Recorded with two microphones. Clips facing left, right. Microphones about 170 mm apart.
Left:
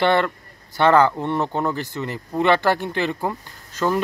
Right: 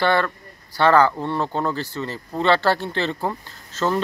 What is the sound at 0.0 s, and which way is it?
Speech, 20° left (ahead or behind).